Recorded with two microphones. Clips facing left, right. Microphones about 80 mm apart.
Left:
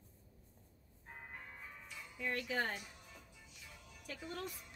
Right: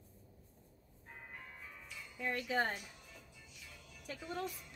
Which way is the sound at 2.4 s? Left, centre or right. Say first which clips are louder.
Right 5 dB; right.